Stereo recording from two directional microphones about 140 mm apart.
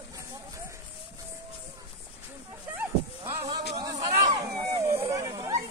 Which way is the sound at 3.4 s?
30° right (ahead or behind).